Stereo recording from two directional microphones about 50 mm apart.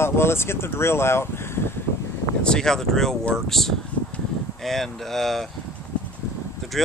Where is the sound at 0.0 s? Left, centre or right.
Left.